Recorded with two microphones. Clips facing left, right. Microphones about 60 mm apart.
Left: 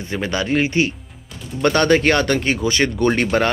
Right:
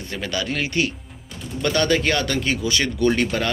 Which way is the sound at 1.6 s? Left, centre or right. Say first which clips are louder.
Left 5 dB; left.